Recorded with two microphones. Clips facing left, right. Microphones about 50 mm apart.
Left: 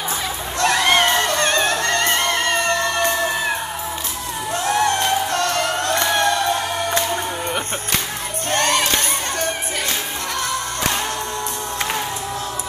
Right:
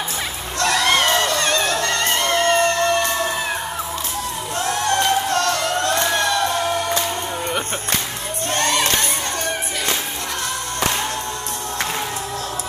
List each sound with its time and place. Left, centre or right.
0.6 s music: left
4.6 s music: left
8.5 s music: left